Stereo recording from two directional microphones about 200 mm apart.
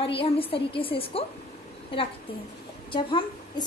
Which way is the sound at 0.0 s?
25° left (ahead or behind).